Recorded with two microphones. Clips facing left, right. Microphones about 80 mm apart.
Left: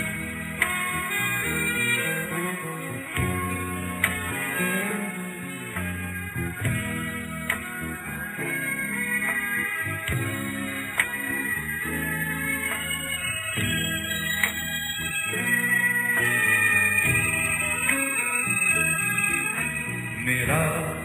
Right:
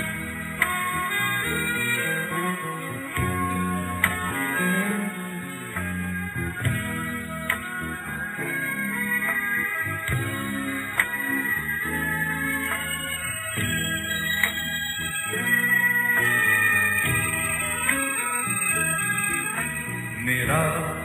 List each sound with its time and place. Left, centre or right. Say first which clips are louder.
1.2 s music: right 2 dB; right
3.5 s music: right 4 dB; right
4.6 s music: right 2 dB; right
13.6 s music: right 1 dB; right
16.2 s organ: right 1 dB; centre
20.4 s music: right 2 dB; centre